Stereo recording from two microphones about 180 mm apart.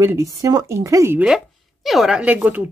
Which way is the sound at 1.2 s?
Centre (ahead or behind).